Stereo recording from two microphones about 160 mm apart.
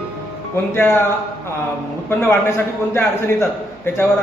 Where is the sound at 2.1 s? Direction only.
15° left (ahead or behind).